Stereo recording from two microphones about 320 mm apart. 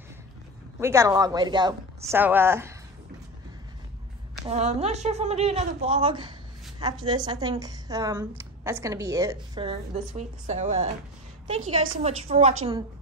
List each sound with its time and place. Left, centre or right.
0.7 s a woman's voice: centre
4.5 s a woman's voice: centre